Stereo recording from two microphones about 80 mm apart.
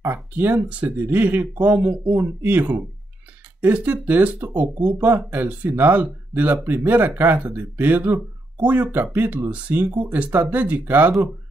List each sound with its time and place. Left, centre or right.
0.0 s speech: right
0.6 s speech: centre